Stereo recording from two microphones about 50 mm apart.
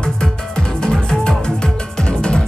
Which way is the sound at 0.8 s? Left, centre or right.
Centre.